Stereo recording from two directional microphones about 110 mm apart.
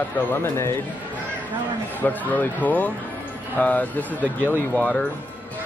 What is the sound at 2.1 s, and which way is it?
Speech, 15° left (ahead or behind).